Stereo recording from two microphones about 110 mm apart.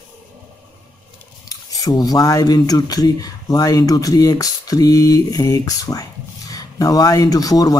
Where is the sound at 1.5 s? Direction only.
35° left (ahead or behind).